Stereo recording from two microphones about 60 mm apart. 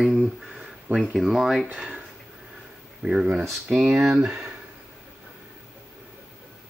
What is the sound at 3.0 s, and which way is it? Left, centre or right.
Speech, right.